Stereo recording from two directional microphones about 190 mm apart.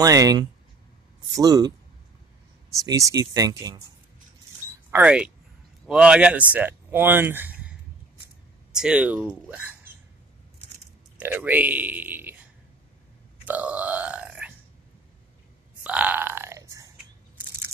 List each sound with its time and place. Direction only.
0.0 s speech: 20° right (ahead or behind)
2.7 s speech: 15° right (ahead or behind)
4.9 s speech: 5° right (ahead or behind)
8.7 s speech: 5° right (ahead or behind)
11.1 s speech: 10° right (ahead or behind)
13.5 s grunt: 10° right (ahead or behind)
15.8 s burping: 5° right (ahead or behind)